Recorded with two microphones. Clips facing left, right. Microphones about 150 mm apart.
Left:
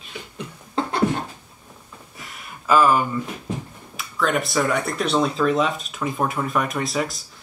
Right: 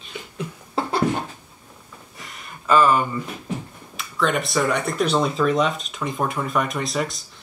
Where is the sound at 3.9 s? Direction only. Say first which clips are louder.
Even; centre (ahead or behind).